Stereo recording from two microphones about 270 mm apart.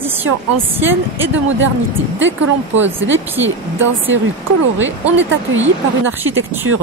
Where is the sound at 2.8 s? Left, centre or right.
Centre.